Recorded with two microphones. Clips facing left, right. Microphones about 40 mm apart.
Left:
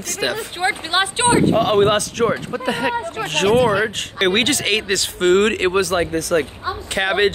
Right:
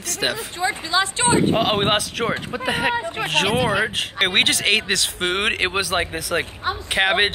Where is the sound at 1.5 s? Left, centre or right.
Right.